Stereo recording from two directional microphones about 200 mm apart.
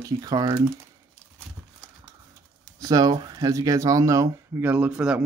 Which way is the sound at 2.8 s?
20° right (ahead or behind).